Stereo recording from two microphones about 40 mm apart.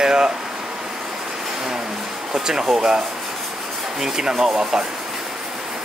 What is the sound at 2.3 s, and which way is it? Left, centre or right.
Speech, centre.